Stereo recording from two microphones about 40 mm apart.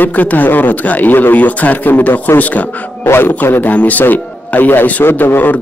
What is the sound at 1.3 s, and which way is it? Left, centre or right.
Speech, left.